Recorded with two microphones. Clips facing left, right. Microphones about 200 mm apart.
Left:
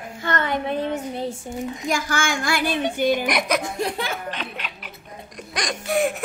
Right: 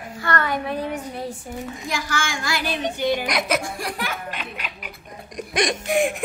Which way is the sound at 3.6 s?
25° left (ahead or behind).